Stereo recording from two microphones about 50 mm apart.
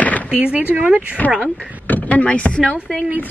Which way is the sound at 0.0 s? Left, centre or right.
Left.